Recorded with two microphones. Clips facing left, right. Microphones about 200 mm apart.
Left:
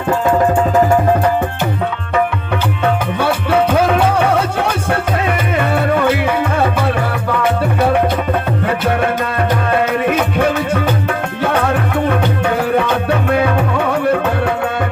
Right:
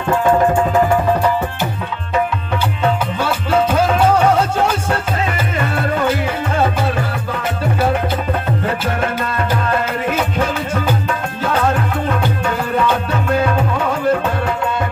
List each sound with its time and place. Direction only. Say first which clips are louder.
2.8 s music: left 2 dB; 60° left (ahead or behind)
9.7 s music: left 4 dB; 60° left (ahead or behind)